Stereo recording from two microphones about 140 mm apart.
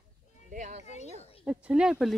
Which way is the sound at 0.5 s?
60° right (ahead or behind).